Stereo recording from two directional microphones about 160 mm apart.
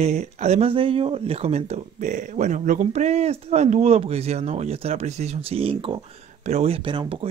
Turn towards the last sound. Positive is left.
turn(degrees=-30)  # may be behind; listen again after turning